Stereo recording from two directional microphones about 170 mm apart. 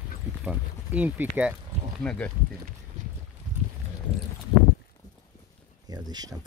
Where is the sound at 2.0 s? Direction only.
5° left (ahead or behind).